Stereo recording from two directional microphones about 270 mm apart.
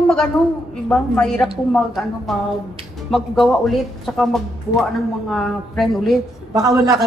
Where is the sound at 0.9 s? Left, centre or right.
Centre.